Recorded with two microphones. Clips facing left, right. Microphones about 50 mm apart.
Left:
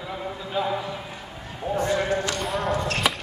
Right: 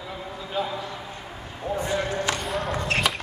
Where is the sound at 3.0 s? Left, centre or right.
Centre.